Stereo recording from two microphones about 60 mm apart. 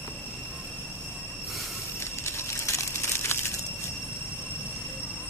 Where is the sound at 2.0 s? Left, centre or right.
Left.